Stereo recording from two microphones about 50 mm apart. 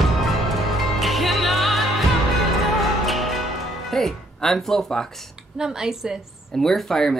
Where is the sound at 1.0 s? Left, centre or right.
Centre.